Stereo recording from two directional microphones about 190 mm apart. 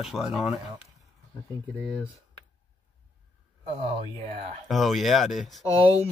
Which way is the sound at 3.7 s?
30° right (ahead or behind).